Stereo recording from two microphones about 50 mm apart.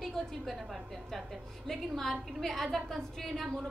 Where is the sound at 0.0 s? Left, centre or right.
Centre.